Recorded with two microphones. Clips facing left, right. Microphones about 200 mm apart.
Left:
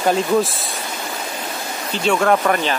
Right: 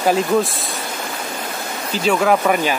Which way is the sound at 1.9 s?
5° right (ahead or behind).